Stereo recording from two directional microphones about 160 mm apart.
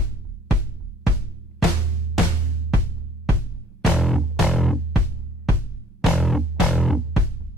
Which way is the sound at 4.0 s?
Centre (ahead or behind).